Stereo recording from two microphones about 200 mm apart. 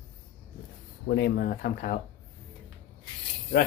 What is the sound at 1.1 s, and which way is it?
Speech, 55° left (ahead or behind).